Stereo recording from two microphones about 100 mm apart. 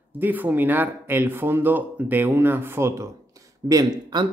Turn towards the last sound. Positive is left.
turn(degrees=-40)  # may be behind; listen again after turning